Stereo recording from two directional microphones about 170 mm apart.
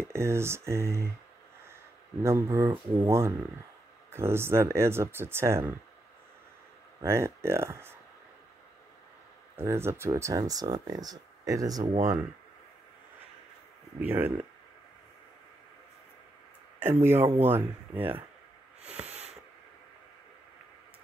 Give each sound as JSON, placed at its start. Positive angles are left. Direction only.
{"t": 0.1, "sound": "speech", "side_deg": -15}
{"t": 2.2, "sound": "speech", "side_deg": -15}
{"t": 7.0, "sound": "speech", "side_deg": -15}
{"t": 9.6, "sound": "speech", "side_deg": -15}
{"t": 11.8, "sound": "speech", "side_deg": -45}
{"t": 13.9, "sound": "speech", "side_deg": -10}
{"t": 17.0, "sound": "speech", "side_deg": -15}
{"t": 19.0, "sound": "a sound", "side_deg": -40}